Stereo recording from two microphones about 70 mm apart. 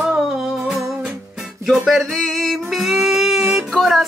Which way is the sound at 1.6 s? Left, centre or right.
Centre.